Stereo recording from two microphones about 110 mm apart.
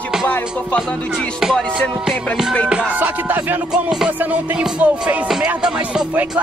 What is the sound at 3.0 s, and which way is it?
Music, 15° right (ahead or behind).